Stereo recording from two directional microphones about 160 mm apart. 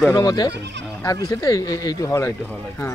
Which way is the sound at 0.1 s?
20° left (ahead or behind).